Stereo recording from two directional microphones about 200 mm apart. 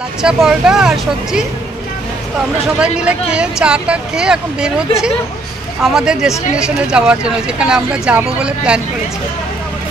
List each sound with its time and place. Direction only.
0.2 s speech: 5° right (ahead or behind)
2.8 s speech: 5° right (ahead or behind)